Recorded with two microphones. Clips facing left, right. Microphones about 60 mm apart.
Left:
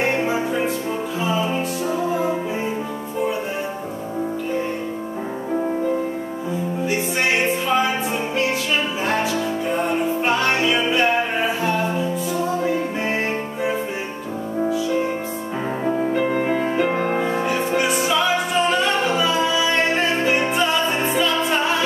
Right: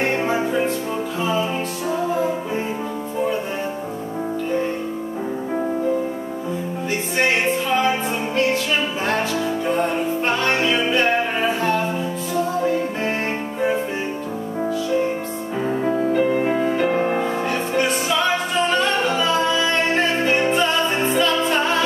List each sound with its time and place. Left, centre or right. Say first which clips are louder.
0.0 s music: even; centre
9.8 s music: even; centre
16.0 s music: right 2 dB; centre
17.2 s music: left 1 dB; centre